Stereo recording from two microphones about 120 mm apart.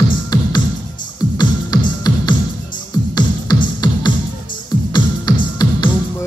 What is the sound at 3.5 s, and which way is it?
Music, 35° left (ahead or behind).